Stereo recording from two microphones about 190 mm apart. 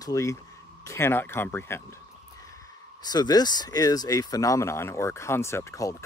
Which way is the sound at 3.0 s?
20° left (ahead or behind).